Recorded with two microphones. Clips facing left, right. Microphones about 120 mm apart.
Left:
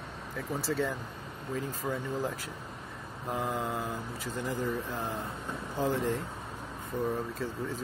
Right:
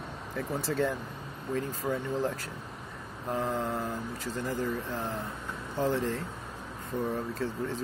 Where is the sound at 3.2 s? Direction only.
10° left (ahead or behind).